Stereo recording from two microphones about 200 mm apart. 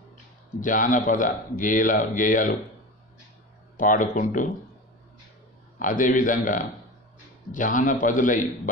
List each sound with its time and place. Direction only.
0.6 s speech: 40° left (ahead or behind)
3.7 s speech: 40° left (ahead or behind)
5.8 s speech: 40° left (ahead or behind)